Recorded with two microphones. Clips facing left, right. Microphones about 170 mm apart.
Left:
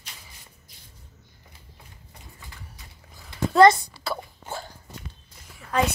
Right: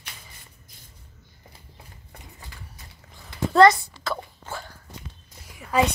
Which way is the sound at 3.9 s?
10° left (ahead or behind).